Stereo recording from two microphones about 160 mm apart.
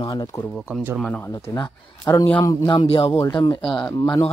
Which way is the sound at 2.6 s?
30° left (ahead or behind).